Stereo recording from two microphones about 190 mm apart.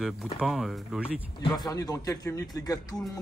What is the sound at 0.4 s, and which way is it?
Speech, centre (ahead or behind).